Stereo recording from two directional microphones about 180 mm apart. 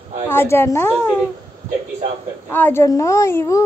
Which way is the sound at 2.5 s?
10° left (ahead or behind).